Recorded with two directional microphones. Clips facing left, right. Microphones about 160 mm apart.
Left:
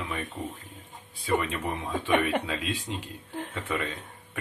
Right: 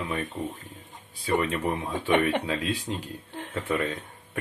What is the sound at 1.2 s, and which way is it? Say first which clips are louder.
Speech: right 2 dB; 40° right (ahead or behind).